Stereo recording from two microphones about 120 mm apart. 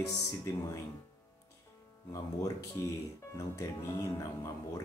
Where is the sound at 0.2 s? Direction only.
30° left (ahead or behind).